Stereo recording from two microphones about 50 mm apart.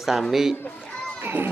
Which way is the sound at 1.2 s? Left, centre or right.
Right.